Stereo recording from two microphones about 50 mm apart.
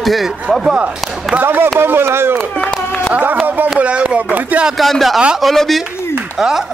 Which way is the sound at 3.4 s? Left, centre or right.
Right.